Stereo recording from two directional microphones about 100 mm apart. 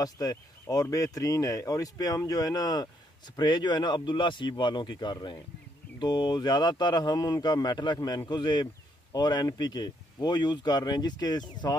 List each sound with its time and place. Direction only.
0.0 s speech: 40° left (ahead or behind)